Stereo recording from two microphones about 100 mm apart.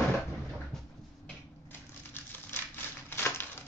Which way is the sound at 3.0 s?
25° left (ahead or behind).